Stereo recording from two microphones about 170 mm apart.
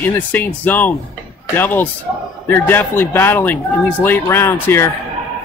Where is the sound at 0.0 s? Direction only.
10° left (ahead or behind).